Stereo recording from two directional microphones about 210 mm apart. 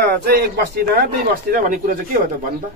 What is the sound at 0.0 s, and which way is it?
Speech, 50° right (ahead or behind).